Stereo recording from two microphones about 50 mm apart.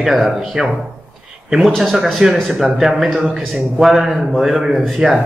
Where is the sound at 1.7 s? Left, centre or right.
Centre.